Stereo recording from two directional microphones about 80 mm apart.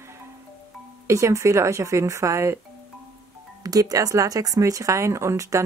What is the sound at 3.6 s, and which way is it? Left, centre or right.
Speech, right.